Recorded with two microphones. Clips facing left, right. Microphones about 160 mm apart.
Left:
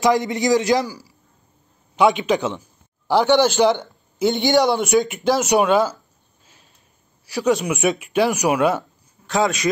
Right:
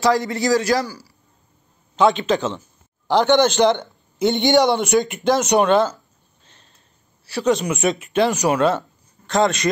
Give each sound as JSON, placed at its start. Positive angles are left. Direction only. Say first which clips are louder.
{"t": 0.0, "sound": "a man's voice", "louder": "left 1 dB", "side_deg": 20}
{"t": 7.4, "sound": "speech", "louder": "even", "side_deg": 5}